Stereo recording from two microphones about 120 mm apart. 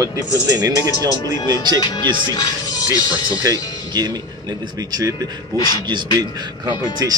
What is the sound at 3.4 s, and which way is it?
Speech, 35° right (ahead or behind).